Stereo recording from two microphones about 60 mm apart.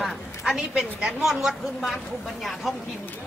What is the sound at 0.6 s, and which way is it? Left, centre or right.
A woman's voice, centre.